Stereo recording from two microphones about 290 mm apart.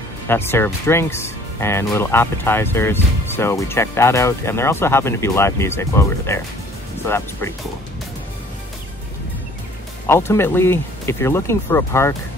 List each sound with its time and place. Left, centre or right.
0.3 s speech: centre
10.0 s speech: centre